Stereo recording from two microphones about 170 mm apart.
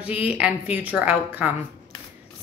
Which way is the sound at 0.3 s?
10° right (ahead or behind).